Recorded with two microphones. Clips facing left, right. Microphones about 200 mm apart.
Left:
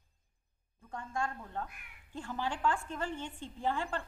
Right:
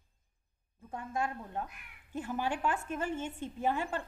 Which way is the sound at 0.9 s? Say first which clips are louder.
Right 2 dB; 20° right (ahead or behind).